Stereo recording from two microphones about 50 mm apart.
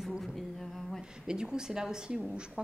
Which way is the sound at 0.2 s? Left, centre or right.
Centre.